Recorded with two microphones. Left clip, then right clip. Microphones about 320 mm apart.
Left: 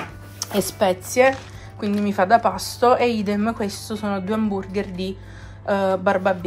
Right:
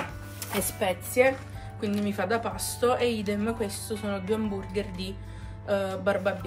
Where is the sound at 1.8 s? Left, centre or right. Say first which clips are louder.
Left 9 dB; centre.